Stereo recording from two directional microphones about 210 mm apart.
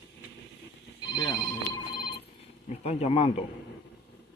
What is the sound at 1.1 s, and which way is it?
Telephone bell ringing, 20° left (ahead or behind).